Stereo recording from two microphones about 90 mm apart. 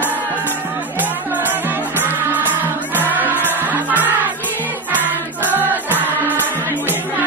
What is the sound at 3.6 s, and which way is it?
Music, 20° right (ahead or behind).